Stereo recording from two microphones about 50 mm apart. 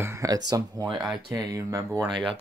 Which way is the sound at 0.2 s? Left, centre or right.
Right.